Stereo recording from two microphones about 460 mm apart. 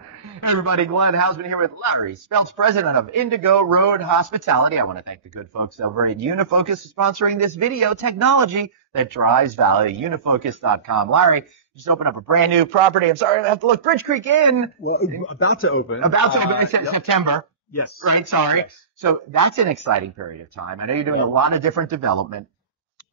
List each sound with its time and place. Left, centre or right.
0.4 s a man's voice: right
12.5 s a man's voice: right
13.8 s a man's voice: right
14.8 s speech: left
16.6 s a man's voice: right